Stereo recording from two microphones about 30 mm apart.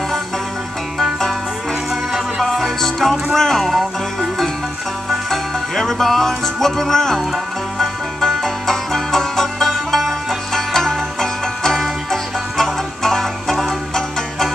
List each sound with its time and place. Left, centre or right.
2.8 s music: centre
5.3 s music: centre